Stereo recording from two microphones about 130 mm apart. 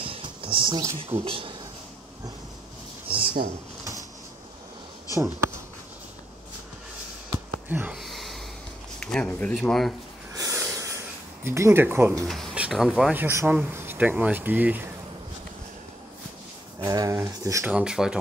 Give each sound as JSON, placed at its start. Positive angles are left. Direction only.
{"t": 0.0, "sound": "a sound", "side_deg": -45}
{"t": 0.9, "sound": "speech", "side_deg": -50}
{"t": 7.2, "sound": "a sound", "side_deg": -15}
{"t": 8.0, "sound": "snort", "side_deg": 0}
{"t": 9.0, "sound": "speech", "side_deg": 10}
{"t": 10.3, "sound": "snort", "side_deg": -25}
{"t": 11.4, "sound": "speech", "side_deg": -20}
{"t": 12.5, "sound": "speech", "side_deg": -5}
{"t": 13.1, "sound": "speech", "side_deg": -20}
{"t": 16.8, "sound": "speech", "side_deg": -25}
{"t": 17.6, "sound": "speech", "side_deg": -5}